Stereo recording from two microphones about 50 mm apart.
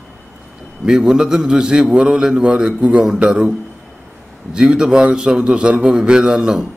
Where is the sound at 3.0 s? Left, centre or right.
Centre.